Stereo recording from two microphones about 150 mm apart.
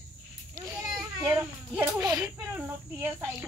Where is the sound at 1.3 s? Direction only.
10° right (ahead or behind).